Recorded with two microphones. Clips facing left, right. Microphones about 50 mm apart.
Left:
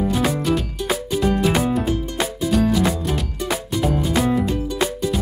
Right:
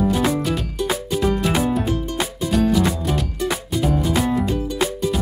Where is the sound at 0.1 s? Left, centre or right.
Centre.